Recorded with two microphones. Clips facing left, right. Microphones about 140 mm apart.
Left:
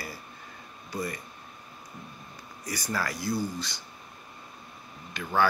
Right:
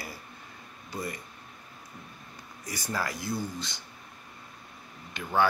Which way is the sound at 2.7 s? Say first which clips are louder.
Left 1 dB; 20° right (ahead or behind).